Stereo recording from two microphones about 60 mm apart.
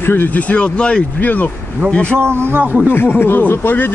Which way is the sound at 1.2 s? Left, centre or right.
Left.